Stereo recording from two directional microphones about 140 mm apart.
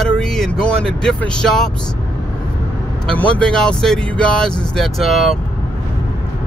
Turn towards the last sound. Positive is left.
turn(degrees=0)  # may be behind; listen again after turning